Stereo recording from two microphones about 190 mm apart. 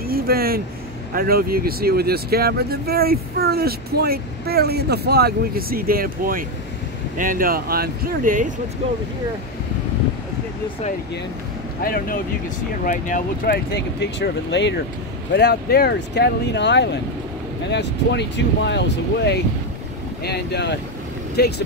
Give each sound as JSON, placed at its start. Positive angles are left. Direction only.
{"t": 0.0, "sound": "a sound", "side_deg": -50}
{"t": 1.1, "sound": "speech", "side_deg": -50}
{"t": 11.8, "sound": "speech", "side_deg": 50}
{"t": 13.9, "sound": "speech", "side_deg": 65}